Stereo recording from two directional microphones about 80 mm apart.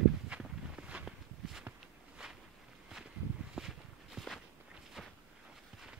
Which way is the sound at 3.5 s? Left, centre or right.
Centre.